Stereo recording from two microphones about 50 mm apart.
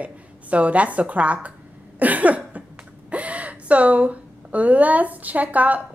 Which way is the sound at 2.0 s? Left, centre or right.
Right.